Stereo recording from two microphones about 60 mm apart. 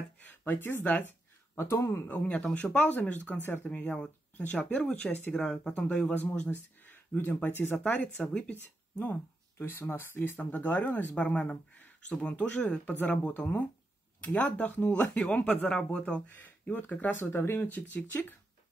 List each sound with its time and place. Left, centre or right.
0.5 s speech: left
0.8 s a sound: left
1.8 s speech: left
2.0 s speech: left
6.0 s speech: left
8.2 s speech: centre
9.0 s speech: left
15.7 s speech: centre
16.3 s speech: left